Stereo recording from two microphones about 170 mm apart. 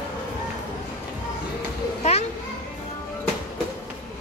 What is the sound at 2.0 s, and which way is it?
Children playing, 40° left (ahead or behind).